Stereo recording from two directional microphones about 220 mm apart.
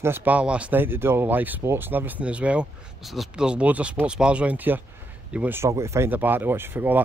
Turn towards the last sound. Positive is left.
turn(degrees=-10)  # may be behind; listen again after turning